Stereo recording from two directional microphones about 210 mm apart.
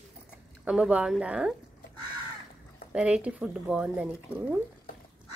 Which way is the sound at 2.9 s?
5° right (ahead or behind).